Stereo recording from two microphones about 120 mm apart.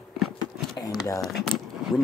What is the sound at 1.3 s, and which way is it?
Keys jangling, centre (ahead or behind).